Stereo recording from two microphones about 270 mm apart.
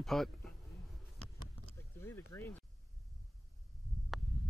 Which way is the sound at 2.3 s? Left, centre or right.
Centre.